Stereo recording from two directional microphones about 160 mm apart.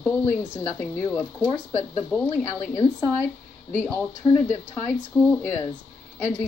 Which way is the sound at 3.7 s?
15° left (ahead or behind).